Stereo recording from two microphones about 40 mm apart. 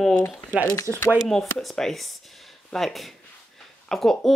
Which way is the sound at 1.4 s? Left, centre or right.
Centre.